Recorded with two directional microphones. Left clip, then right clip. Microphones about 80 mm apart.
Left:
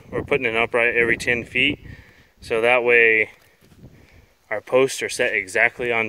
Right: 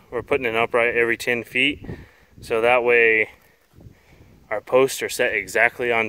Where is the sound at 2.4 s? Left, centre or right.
Centre.